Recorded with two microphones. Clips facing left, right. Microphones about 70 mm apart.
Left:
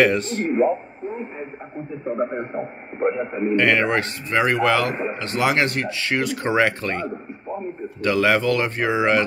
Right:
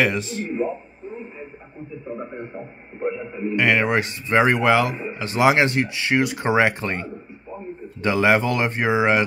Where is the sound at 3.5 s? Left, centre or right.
Centre.